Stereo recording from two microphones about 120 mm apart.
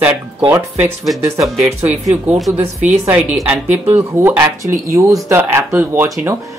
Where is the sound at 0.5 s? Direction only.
15° right (ahead or behind).